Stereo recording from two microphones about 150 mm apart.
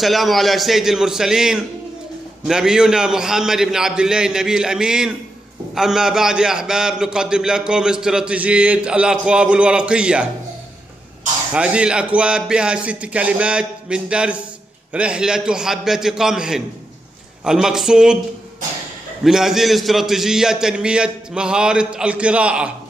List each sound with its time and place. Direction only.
0.0 s a man's voice: centre (ahead or behind)
11.5 s a man's voice: 5° right (ahead or behind)
19.2 s a man's voice: 5° right (ahead or behind)